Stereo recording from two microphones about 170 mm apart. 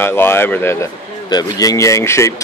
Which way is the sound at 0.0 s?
15° left (ahead or behind).